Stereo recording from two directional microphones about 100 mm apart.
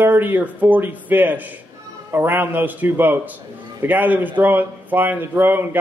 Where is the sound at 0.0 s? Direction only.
20° right (ahead or behind).